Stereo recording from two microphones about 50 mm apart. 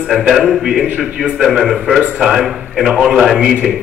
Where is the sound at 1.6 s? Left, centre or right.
Centre.